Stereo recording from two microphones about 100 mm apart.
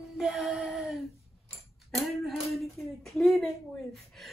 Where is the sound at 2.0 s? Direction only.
Centre (ahead or behind).